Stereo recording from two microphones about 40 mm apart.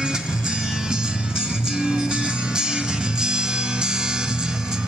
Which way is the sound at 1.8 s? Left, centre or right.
Centre.